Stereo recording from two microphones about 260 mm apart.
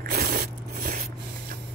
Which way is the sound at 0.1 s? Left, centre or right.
Right.